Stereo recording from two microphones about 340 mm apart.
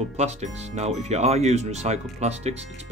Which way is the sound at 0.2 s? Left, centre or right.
Centre.